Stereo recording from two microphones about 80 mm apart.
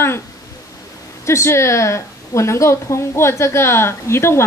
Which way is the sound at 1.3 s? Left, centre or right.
Left.